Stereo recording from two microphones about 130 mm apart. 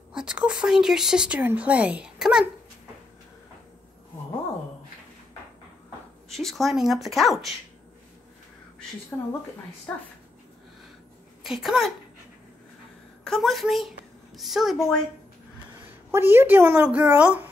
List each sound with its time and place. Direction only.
0.1 s speech: 10° right (ahead or behind)
6.2 s a woman's voice: centre (ahead or behind)
9.1 s speech: 10° left (ahead or behind)
11.4 s a woman's voice: 5° right (ahead or behind)
13.2 s a woman's voice: centre (ahead or behind)
16.1 s speech: 20° right (ahead or behind)